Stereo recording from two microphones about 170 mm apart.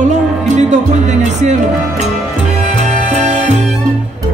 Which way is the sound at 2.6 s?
45° right (ahead or behind).